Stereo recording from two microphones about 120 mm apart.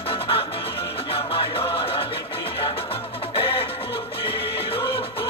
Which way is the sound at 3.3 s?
50° left (ahead or behind).